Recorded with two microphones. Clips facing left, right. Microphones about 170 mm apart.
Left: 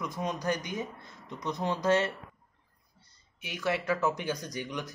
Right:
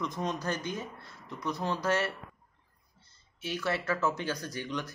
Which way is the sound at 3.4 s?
15° left (ahead or behind).